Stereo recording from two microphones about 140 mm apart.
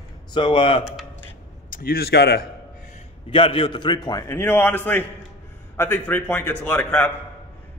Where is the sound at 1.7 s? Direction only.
90° left.